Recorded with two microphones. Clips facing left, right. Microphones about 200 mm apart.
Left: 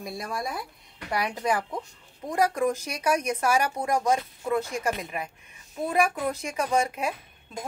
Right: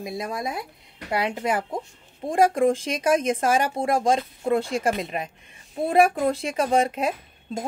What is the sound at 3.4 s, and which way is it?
Speech, 30° right (ahead or behind).